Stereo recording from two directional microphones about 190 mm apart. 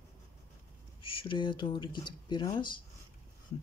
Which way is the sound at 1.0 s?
30° left (ahead or behind).